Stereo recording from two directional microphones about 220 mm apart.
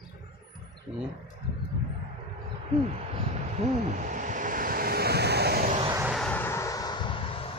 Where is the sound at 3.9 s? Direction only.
35° right (ahead or behind).